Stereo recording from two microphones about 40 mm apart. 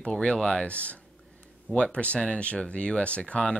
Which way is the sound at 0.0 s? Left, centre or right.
Centre.